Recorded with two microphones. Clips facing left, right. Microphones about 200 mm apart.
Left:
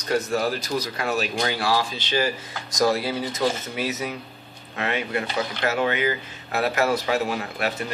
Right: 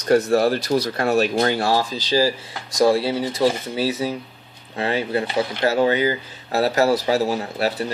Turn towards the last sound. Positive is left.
turn(degrees=-35)  # may be behind; listen again after turning